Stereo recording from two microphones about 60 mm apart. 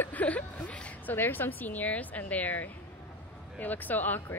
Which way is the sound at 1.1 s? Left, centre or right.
Left.